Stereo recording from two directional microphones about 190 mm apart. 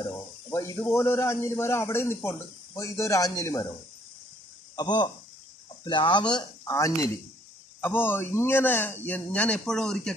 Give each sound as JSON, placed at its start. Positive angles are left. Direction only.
{"t": 0.1, "sound": "a man's voice", "side_deg": 15}
{"t": 4.7, "sound": "a man's voice", "side_deg": 25}